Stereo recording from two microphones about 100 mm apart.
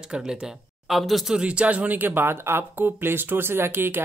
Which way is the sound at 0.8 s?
Centre (ahead or behind).